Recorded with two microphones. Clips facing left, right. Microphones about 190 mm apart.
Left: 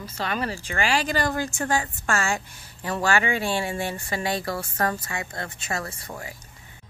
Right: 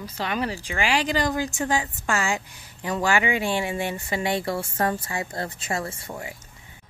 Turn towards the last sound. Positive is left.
turn(degrees=-25)  # may be behind; listen again after turning